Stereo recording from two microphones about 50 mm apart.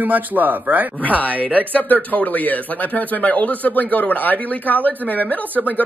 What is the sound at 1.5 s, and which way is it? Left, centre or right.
Speech, left.